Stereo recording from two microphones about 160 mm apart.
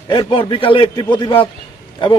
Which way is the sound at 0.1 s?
30° left (ahead or behind).